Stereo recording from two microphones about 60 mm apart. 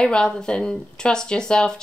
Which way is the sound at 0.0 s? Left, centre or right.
Centre.